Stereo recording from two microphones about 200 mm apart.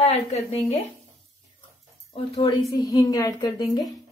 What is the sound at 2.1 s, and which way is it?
Speech, 30° left (ahead or behind).